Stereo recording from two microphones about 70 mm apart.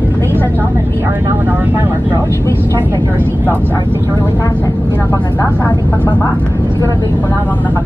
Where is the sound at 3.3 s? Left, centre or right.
Right.